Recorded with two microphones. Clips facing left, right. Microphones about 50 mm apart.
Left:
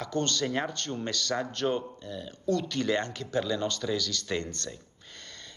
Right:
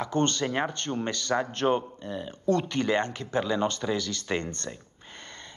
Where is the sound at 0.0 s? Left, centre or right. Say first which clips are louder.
Right 4 dB; right.